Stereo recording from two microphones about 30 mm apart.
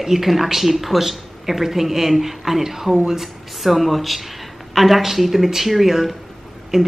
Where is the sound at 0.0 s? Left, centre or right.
Centre.